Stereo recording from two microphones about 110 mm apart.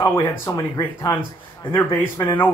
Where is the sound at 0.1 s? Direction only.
25° left (ahead or behind).